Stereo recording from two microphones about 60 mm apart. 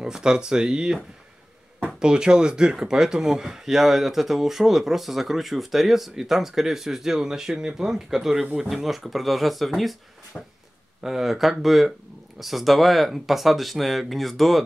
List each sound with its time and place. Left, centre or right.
0.0 s speech: centre
10.3 s a sound: left
11.0 s speech: centre